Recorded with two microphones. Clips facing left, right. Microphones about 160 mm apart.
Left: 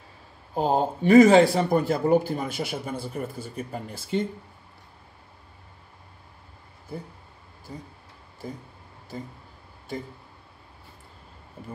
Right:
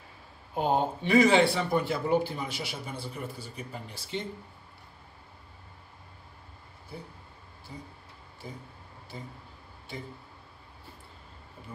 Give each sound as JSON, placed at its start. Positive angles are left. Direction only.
{"t": 0.6, "sound": "speech", "side_deg": 40}
{"t": 6.9, "sound": "speech", "side_deg": 50}